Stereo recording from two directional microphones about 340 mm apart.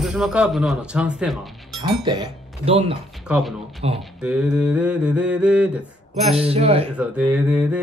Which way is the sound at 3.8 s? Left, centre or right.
Centre.